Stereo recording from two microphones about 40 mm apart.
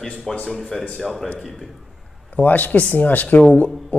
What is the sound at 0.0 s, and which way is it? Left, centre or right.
Speech, centre.